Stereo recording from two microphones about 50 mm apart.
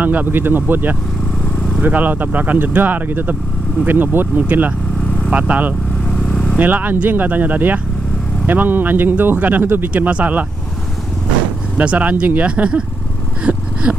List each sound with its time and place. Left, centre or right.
0.0 s speech: right
4.4 s speech: right
6.0 s vehicle: centre
6.6 s speech: right
10.0 s speech: right
11.7 s speech: right
13.4 s a sound: right